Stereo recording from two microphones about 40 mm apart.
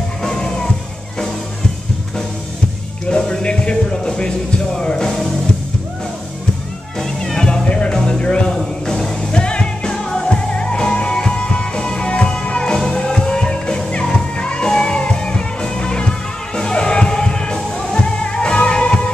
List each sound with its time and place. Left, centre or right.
0.2 s music: centre
3.1 s music: left
7.0 s music: centre